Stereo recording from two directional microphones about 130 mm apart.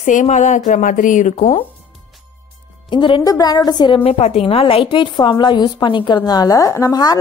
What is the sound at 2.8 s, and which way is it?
A woman's voice, 40° left (ahead or behind).